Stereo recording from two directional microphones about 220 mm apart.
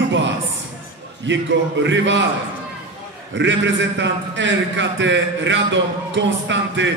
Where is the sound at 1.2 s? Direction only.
55° right (ahead or behind).